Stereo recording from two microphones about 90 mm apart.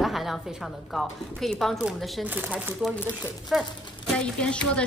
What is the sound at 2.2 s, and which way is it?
Speech, 20° right (ahead or behind).